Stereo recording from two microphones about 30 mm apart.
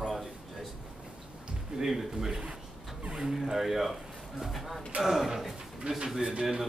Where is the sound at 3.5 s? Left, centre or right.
Centre.